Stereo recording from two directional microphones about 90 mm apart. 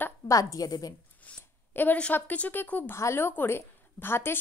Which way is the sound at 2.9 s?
30° left (ahead or behind).